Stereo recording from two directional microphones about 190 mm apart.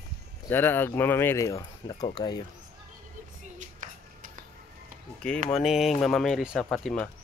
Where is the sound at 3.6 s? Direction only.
40° right (ahead or behind).